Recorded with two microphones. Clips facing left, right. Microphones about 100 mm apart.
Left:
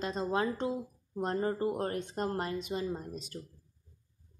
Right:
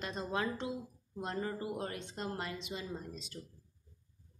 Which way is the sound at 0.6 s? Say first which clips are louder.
Left 6 dB; 35° left (ahead or behind).